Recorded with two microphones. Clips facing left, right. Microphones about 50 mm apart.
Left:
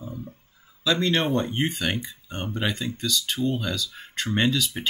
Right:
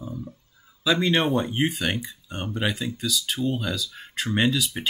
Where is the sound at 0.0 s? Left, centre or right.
Left.